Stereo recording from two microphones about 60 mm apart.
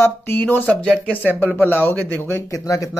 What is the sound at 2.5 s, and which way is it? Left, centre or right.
Speech, left.